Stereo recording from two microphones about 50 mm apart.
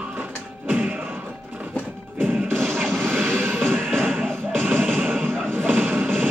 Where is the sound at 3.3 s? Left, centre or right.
Right.